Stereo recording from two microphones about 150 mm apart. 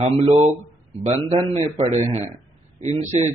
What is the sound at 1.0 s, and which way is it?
Speech, 35° right (ahead or behind).